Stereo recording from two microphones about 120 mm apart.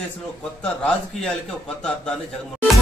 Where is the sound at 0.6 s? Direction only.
5° left (ahead or behind).